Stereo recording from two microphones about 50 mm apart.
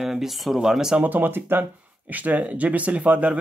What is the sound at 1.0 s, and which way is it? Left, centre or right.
Speech, right.